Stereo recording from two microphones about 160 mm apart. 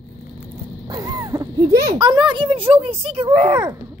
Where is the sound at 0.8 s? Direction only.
25° right (ahead or behind).